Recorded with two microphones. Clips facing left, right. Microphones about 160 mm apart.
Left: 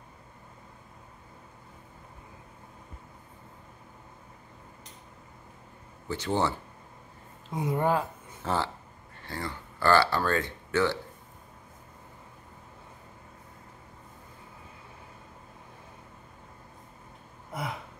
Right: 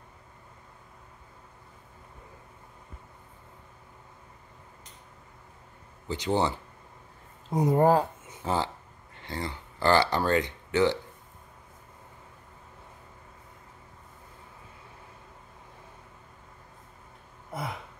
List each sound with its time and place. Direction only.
6.0 s speech: 15° right (ahead or behind)
7.5 s speech: 40° right (ahead or behind)
8.3 s a sound: 15° right (ahead or behind)
9.2 s speech: 20° right (ahead or behind)